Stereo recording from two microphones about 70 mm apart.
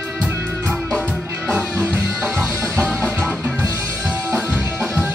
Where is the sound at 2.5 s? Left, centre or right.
Right.